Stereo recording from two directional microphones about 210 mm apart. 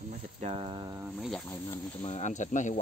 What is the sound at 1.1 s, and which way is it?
Speech, centre (ahead or behind).